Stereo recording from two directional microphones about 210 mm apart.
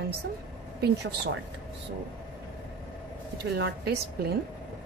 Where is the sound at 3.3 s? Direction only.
55° right (ahead or behind).